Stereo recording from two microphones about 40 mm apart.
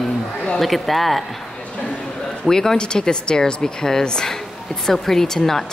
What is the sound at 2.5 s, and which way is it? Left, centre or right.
Speech, centre.